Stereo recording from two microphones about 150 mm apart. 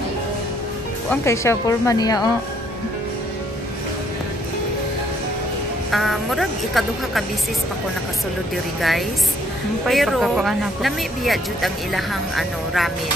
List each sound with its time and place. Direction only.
1.2 s a woman's voice: 20° left (ahead or behind)
5.9 s speech: centre (ahead or behind)
9.8 s speech: centre (ahead or behind)